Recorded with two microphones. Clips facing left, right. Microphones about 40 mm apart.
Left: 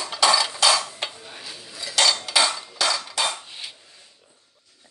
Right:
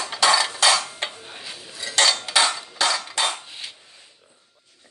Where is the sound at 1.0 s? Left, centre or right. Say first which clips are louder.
Right 1 dB; right.